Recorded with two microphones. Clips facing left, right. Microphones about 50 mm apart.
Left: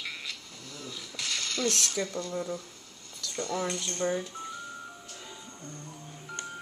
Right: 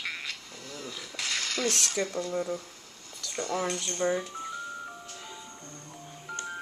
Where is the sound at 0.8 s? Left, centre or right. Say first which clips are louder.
Right 1 dB; right.